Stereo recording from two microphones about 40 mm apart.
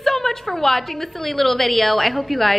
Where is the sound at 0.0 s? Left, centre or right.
Centre.